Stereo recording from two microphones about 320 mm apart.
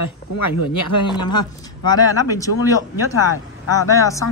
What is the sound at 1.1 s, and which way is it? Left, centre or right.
Speech, centre.